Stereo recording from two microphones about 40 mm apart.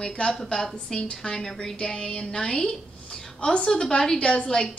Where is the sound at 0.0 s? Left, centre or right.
Left.